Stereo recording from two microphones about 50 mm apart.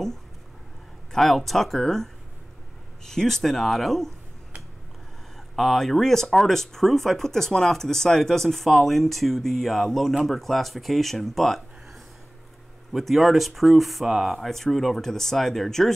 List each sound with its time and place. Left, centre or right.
1.1 s speech: centre
3.1 s speech: centre
5.6 s speech: centre